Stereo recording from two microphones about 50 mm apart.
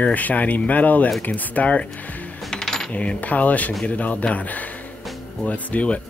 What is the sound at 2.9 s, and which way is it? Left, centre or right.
Speech, left.